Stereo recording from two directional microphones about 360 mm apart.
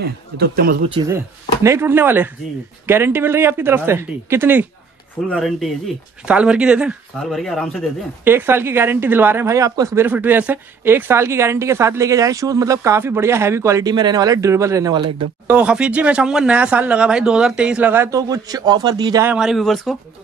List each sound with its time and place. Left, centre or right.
0.0 s speech: right
0.8 s speech: centre